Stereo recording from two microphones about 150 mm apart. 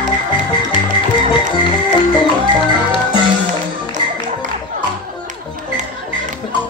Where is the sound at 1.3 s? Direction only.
35° left (ahead or behind).